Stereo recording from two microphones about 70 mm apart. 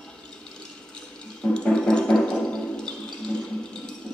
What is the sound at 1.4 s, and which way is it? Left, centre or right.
Music, centre.